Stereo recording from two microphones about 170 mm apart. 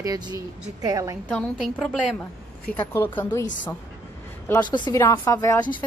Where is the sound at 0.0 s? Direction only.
25° right (ahead or behind).